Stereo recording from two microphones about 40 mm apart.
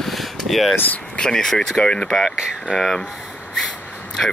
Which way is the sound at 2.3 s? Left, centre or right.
Centre.